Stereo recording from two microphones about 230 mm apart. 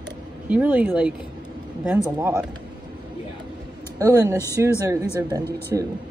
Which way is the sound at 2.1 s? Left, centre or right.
Centre.